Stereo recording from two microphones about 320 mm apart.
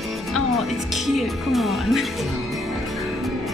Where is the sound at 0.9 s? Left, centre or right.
Centre.